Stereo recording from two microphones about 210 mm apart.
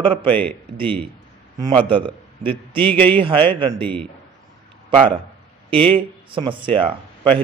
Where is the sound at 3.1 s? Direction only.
25° right (ahead or behind).